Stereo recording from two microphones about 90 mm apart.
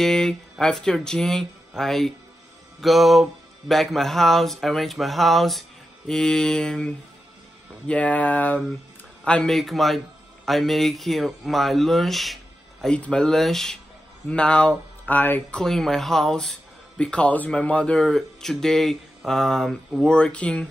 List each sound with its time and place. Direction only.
0.0 s speech: 5° left (ahead or behind)
1.8 s mantra: 5° left (ahead or behind)
7.9 s speech: 15° left (ahead or behind)
9.2 s mantra: 10° left (ahead or behind)
12.8 s speech: 10° left (ahead or behind)
15.6 s mantra: 5° left (ahead or behind)
20.0 s speech: 10° left (ahead or behind)